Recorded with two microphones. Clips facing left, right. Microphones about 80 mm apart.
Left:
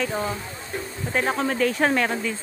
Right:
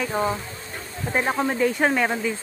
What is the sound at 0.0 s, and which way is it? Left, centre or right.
Speech, centre.